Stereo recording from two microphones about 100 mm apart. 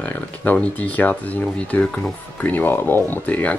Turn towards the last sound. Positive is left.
turn(degrees=15)  # may be behind; listen again after turning